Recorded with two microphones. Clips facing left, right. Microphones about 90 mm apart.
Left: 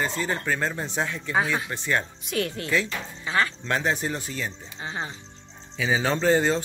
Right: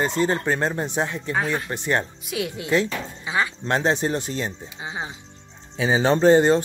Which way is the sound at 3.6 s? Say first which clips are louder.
Right 4 dB; 30° right (ahead or behind).